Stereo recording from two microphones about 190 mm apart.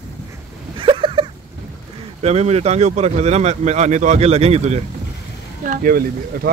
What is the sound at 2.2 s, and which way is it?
Speech, 35° right (ahead or behind).